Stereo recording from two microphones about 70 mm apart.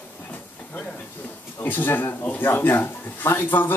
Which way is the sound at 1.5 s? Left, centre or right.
Left.